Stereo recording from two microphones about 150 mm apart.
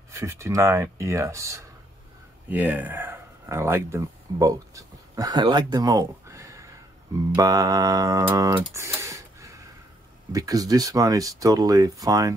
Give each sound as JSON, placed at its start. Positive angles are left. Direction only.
{"t": 0.2, "sound": "speech", "side_deg": -20}
{"t": 8.4, "sound": "typing", "side_deg": -20}
{"t": 10.3, "sound": "speech", "side_deg": -25}